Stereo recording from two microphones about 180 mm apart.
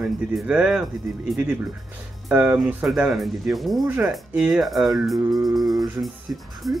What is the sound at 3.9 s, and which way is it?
Speech, 10° right (ahead or behind).